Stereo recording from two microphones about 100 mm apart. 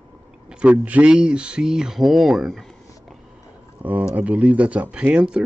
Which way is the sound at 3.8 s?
15° right (ahead or behind).